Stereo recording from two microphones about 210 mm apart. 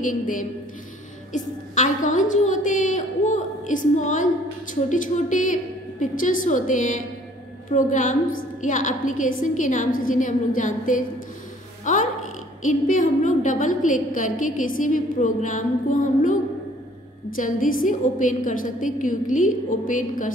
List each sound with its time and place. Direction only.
0.0 s a woman's voice: 40° left (ahead or behind)
17.4 s a woman's voice: 40° left (ahead or behind)